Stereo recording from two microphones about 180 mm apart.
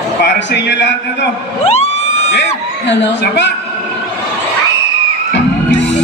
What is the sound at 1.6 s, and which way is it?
Vehicle, 35° left (ahead or behind).